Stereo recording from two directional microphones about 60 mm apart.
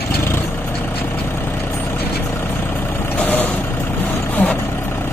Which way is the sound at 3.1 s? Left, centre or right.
Left.